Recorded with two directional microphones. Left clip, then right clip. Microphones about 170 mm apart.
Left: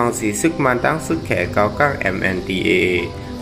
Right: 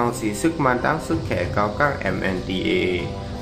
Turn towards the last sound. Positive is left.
turn(degrees=15)  # may be behind; listen again after turning